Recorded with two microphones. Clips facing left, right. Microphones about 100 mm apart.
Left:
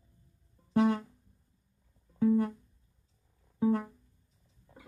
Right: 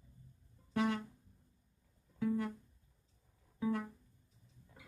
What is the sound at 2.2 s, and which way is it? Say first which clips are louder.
Music: left 9 dB; 35° left (ahead or behind).